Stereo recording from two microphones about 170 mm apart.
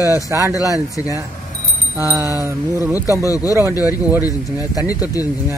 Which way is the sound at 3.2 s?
20° left (ahead or behind).